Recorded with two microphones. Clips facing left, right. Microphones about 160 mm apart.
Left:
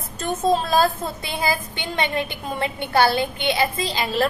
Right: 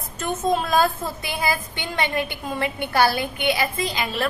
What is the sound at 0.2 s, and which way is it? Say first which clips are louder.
A woman's voice: left 2 dB; 30° left (ahead or behind).